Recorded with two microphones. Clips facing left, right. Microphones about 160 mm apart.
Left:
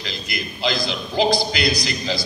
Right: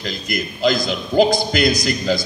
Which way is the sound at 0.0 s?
45° right (ahead or behind).